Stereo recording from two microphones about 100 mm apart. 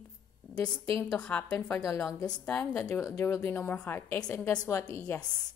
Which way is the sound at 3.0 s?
30° left (ahead or behind).